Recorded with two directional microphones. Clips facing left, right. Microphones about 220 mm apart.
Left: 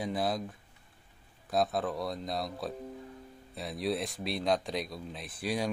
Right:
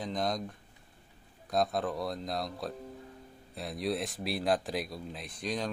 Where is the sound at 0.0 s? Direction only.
5° left (ahead or behind).